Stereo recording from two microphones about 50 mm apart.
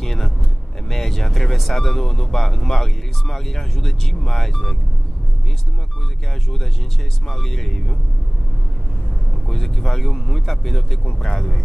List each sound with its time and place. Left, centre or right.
0.0 s vehicle: centre
0.8 s speech: centre
7.2 s speech: centre
9.5 s speech: centre
11.1 s speech: centre